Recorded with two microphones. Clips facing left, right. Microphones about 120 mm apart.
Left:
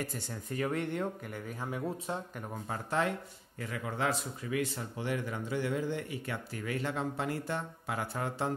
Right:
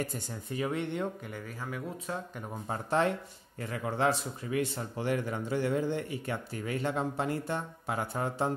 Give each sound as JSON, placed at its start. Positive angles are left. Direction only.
{"t": 0.5, "sound": "speech", "side_deg": -5}
{"t": 1.6, "sound": "speech", "side_deg": 25}
{"t": 2.7, "sound": "a man's voice", "side_deg": -30}
{"t": 4.7, "sound": "speech", "side_deg": -40}